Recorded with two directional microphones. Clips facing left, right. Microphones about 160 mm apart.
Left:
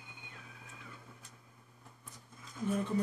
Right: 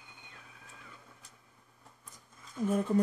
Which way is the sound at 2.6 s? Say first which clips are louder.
Right 5 dB; 50° right (ahead or behind).